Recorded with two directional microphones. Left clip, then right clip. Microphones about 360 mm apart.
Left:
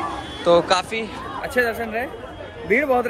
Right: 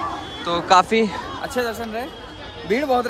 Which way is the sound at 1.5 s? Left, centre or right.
Centre.